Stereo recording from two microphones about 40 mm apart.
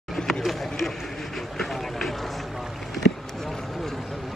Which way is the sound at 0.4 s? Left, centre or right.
Centre.